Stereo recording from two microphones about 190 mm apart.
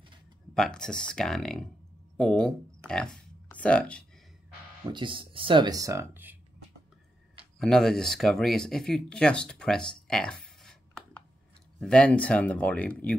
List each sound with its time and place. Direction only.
0.6 s speech: 5° left (ahead or behind)
4.9 s speech: 25° right (ahead or behind)
7.5 s speech: 5° left (ahead or behind)